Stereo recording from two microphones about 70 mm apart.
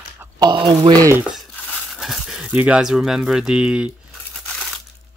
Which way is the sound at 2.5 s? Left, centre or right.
Centre.